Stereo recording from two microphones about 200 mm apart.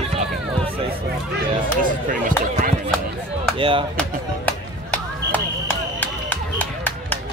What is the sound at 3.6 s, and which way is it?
Speech, 25° right (ahead or behind).